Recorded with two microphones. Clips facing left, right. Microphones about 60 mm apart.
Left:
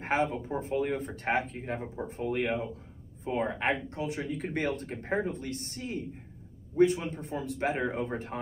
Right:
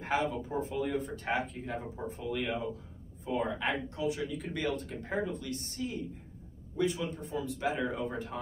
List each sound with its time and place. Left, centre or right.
0.0 s speech: left